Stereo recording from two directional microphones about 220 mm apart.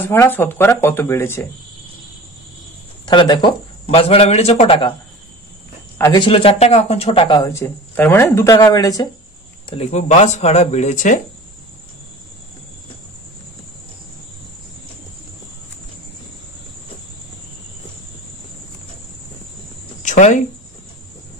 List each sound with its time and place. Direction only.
0.1 s a man's voice: 10° left (ahead or behind)
3.1 s speech: 20° left (ahead or behind)
5.9 s a man's voice: 15° left (ahead or behind)
9.7 s speech: 30° left (ahead or behind)
20.0 s cricket: 35° left (ahead or behind)